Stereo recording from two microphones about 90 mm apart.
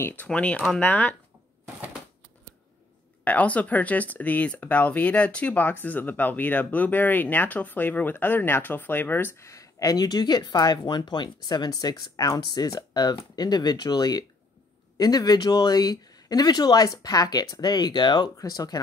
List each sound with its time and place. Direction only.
0.0 s speech: 20° left (ahead or behind)
3.3 s speech: 15° left (ahead or behind); by 18.8 s 45° left (ahead or behind)